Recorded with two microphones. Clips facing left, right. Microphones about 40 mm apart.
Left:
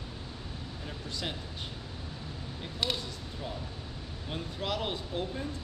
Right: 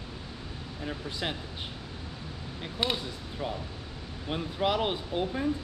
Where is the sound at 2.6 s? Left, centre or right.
Right.